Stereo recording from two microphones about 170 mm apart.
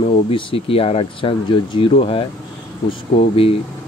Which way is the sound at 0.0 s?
35° left (ahead or behind).